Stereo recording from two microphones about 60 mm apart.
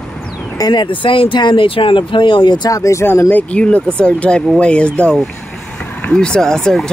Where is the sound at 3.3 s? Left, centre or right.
Left.